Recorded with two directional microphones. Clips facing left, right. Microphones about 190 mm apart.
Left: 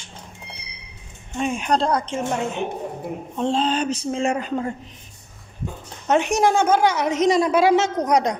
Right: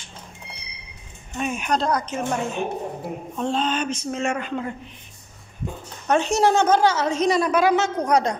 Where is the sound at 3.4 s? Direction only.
25° left (ahead or behind).